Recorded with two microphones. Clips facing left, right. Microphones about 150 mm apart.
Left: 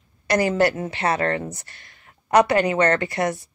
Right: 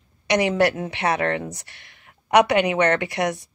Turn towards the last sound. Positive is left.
turn(degrees=0)  # may be behind; listen again after turning